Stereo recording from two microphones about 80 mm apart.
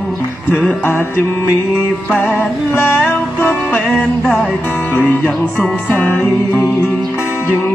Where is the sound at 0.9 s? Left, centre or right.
Left.